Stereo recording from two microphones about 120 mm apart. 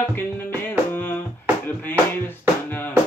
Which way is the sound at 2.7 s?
15° left (ahead or behind).